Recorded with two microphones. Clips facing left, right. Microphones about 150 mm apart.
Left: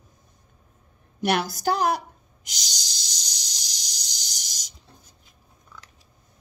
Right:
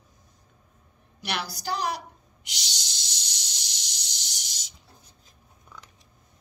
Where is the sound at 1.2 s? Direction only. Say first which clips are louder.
Left 9 dB; 50° left (ahead or behind).